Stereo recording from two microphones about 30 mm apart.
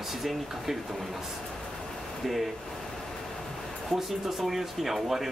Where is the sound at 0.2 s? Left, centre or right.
Centre.